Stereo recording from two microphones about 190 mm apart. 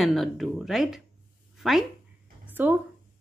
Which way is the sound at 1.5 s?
Centre (ahead or behind).